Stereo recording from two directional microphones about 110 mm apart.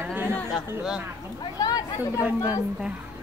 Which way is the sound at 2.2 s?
15° right (ahead or behind).